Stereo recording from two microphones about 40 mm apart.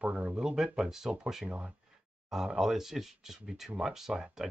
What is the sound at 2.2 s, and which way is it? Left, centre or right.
Speech, centre.